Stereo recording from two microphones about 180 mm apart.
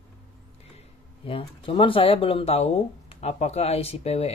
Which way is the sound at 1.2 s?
30° left (ahead or behind).